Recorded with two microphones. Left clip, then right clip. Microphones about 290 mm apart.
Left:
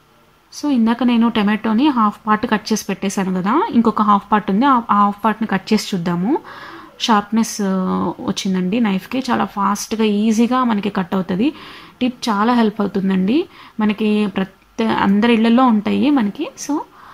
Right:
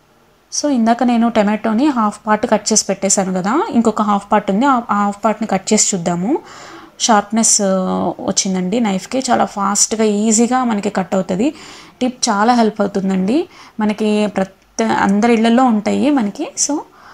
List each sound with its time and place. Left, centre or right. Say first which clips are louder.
0.7 s a woman's voice: right 3 dB; centre